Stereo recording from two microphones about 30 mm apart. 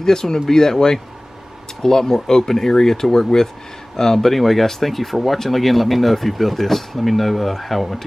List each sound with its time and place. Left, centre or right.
0.0 s speech: left
4.3 s speech: centre